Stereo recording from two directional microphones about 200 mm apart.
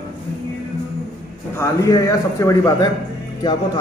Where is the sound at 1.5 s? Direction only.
15° left (ahead or behind).